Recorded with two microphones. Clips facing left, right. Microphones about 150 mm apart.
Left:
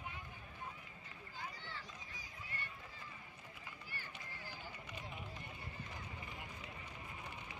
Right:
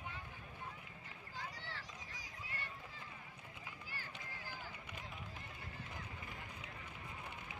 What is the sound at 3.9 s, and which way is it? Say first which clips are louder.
Run: right 1 dB; 90° right.